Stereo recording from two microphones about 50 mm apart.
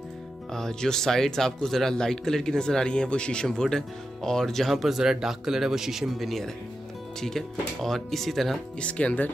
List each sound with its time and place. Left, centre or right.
0.5 s speech: centre
3.4 s speech: centre
8.7 s speech: left